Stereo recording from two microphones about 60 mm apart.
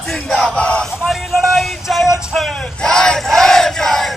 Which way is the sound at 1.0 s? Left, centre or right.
Centre.